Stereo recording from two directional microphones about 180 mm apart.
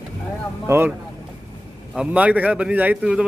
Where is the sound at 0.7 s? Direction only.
15° right (ahead or behind).